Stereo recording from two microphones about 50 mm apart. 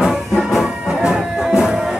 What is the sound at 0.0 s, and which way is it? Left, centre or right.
Music, centre.